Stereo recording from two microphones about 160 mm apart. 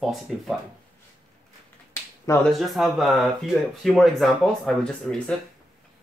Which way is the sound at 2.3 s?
20° left (ahead or behind).